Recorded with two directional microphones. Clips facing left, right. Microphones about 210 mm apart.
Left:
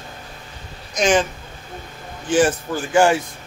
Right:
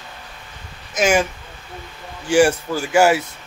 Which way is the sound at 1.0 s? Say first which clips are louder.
Even; 10° right (ahead or behind).